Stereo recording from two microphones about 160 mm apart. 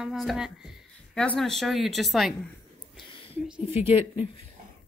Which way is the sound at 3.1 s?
30° left (ahead or behind).